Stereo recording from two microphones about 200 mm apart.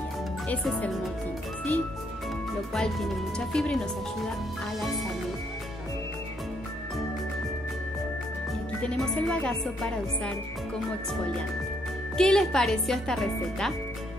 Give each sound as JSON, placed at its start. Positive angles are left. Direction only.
{"t": 0.5, "sound": "speech", "side_deg": 5}
{"t": 2.7, "sound": "speech", "side_deg": 0}
{"t": 8.8, "sound": "speech", "side_deg": 5}
{"t": 12.2, "sound": "speech", "side_deg": 5}